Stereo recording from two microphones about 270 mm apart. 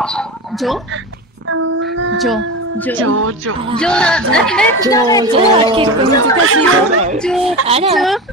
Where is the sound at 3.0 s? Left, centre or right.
Right.